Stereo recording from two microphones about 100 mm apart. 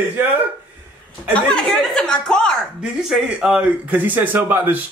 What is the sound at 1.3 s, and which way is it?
Speech, 10° left (ahead or behind).